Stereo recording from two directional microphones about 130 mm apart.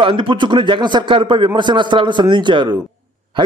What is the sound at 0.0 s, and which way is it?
A man's voice, 40° right (ahead or behind).